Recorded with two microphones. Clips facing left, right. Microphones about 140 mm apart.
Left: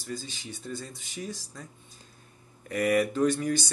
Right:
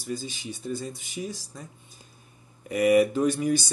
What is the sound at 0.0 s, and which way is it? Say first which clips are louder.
Speech: right 4 dB; 10° right (ahead or behind).